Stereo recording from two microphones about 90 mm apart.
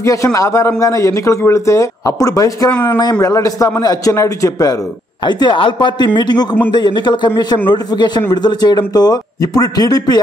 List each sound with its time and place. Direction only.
0.0 s a man's voice: 35° left (ahead or behind)
2.7 s speech: 25° left (ahead or behind)
3.2 s a man's voice: 35° left (ahead or behind)
5.2 s speech: 55° left (ahead or behind)